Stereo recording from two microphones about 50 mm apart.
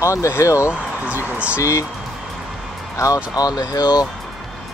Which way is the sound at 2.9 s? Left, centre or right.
Left.